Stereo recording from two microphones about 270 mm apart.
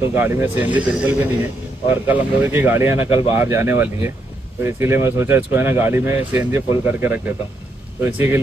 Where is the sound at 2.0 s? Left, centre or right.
Centre.